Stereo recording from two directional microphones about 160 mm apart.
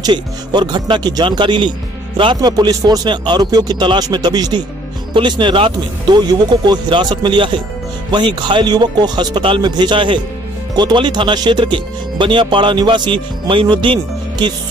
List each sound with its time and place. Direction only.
0.0 s speech: 30° right (ahead or behind)